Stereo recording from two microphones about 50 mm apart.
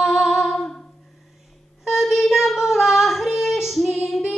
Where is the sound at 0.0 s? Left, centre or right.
Centre.